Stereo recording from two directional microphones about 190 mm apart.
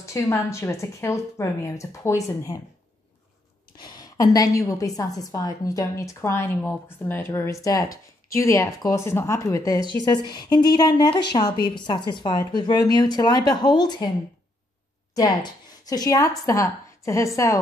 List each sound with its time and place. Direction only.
0.0 s a woman's voice: 15° left (ahead or behind)
3.7 s a woman's voice: 20° left (ahead or behind)
15.1 s a woman's voice: 20° left (ahead or behind)